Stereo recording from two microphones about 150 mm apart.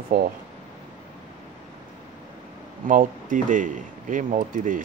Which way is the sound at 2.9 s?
60° right (ahead or behind).